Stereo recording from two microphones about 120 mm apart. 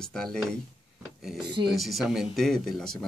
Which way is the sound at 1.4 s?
40° right (ahead or behind).